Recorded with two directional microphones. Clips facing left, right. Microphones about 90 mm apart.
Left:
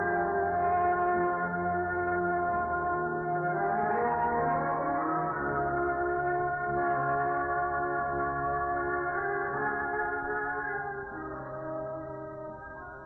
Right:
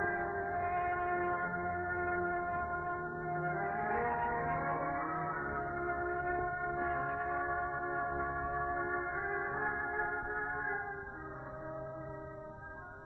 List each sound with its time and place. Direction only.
0.0 s music: 35° left (ahead or behind)
3.3 s gong: 30° left (ahead or behind)
5.9 s gong: 30° left (ahead or behind)
8.0 s music: 25° left (ahead or behind)